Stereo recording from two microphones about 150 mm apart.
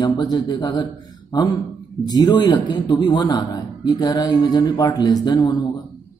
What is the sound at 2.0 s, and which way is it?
A man's voice, 30° left (ahead or behind).